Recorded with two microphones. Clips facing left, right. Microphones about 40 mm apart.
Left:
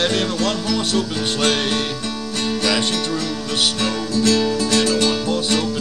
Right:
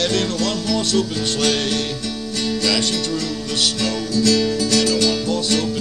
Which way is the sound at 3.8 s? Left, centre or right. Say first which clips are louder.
Right 1 dB; left.